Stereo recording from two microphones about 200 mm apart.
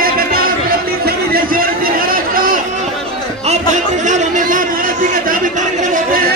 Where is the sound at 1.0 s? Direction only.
45° right (ahead or behind).